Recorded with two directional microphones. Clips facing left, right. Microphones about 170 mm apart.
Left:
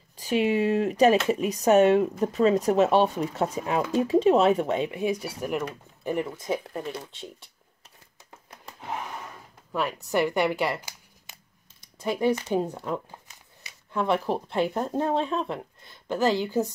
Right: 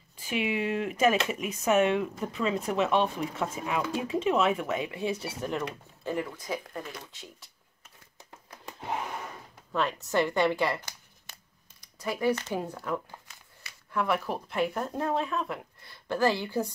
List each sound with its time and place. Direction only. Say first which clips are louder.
0.2 s speech: left 7 dB; 40° left (ahead or behind)
9.7 s speech: left 1 dB; 10° left (ahead or behind)
11.8 s a sound: left 4 dB; 25° left (ahead or behind)
12.5 s speech: left 5 dB; 25° left (ahead or behind)